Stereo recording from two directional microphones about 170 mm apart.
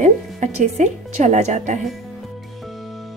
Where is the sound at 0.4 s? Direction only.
45° right (ahead or behind).